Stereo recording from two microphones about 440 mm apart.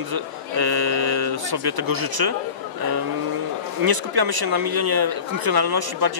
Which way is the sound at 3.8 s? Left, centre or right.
Right.